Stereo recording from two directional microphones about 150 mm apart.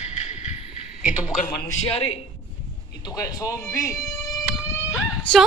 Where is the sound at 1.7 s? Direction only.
40° left (ahead or behind).